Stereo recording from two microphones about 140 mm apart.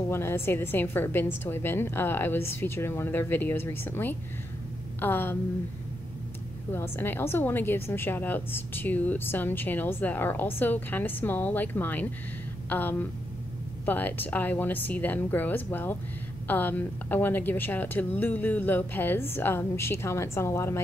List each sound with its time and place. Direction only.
0.1 s a woman's voice: 15° left (ahead or behind)
6.7 s a woman's voice: 15° left (ahead or behind)